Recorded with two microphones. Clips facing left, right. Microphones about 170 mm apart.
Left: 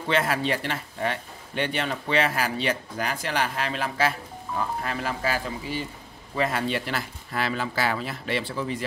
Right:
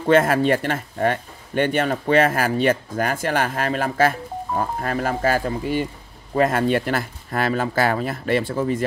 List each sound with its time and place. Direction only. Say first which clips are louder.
0.0 s speech: right 8 dB; 50° right (ahead or behind)